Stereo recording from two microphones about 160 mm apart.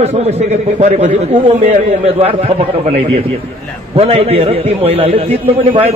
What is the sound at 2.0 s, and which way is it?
A man's voice, 35° right (ahead or behind).